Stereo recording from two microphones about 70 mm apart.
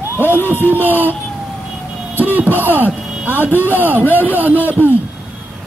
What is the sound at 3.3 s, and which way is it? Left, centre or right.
Speech, left.